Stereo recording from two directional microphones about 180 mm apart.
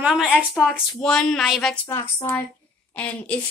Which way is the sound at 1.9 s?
15° left (ahead or behind).